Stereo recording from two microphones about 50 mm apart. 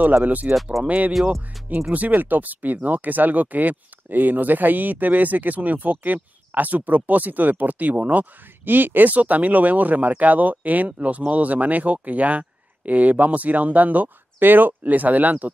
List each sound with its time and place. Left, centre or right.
0.0 s speech: right